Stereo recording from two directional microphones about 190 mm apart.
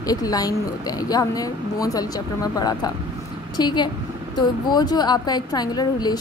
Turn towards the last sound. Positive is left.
turn(degrees=20)  # may be behind; listen again after turning